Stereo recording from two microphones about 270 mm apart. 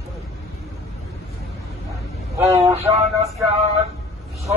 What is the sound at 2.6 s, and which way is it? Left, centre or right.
Vehicle, right.